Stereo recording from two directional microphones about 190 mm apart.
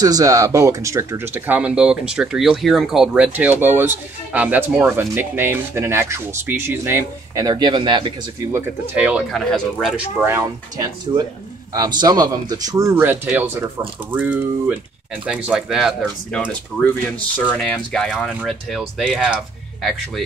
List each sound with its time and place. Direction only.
0.0 s speech: 20° right (ahead or behind)
8.5 s speech: 5° right (ahead or behind)
17.5 s speech: 5° left (ahead or behind)